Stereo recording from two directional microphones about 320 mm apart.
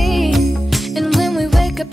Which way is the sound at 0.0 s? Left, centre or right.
Centre.